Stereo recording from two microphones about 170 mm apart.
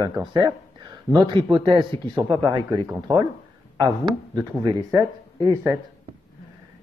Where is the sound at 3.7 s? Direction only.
20° right (ahead or behind).